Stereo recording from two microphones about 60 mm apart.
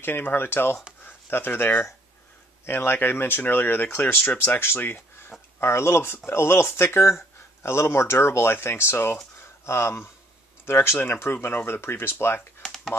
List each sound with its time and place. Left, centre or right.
0.0 s speech: left
5.6 s speech: left
12.6 s computer keyboard: centre